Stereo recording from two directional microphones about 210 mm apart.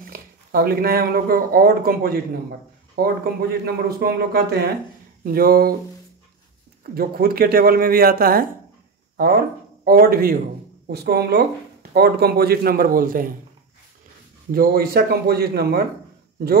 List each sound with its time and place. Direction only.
0.1 s speech: 45° right (ahead or behind)
6.8 s speech: 45° right (ahead or behind)
14.5 s speech: 45° right (ahead or behind)